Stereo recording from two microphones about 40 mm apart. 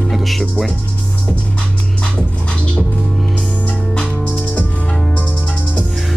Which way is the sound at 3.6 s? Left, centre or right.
Left.